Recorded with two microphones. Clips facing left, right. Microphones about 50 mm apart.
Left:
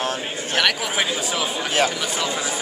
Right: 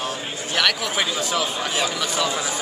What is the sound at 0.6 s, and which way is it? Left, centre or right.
Speech, centre.